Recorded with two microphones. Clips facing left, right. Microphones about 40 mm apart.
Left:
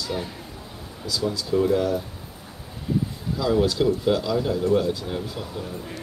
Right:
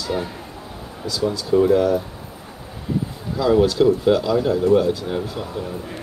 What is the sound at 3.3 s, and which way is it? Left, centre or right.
Speech, centre.